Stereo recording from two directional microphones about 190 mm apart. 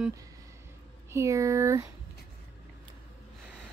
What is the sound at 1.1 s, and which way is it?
Speech, 15° right (ahead or behind).